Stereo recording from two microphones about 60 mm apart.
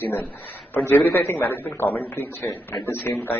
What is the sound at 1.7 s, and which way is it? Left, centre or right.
A man's voice, left.